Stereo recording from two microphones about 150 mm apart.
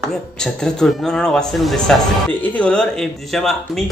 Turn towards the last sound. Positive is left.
turn(degrees=0)  # may be behind; listen again after turning